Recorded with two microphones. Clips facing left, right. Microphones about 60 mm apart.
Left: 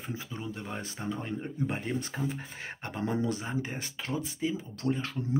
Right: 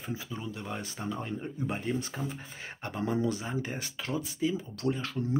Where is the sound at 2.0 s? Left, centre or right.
Left.